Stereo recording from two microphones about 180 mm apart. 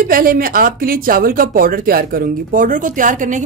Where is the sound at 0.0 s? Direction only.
50° right (ahead or behind).